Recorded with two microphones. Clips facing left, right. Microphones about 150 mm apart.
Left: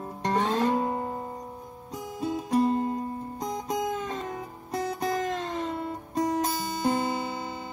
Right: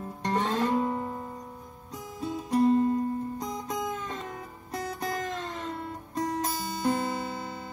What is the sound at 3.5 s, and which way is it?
Music, 10° left (ahead or behind).